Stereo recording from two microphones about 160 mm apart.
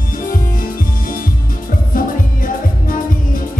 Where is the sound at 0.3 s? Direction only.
60° left (ahead or behind).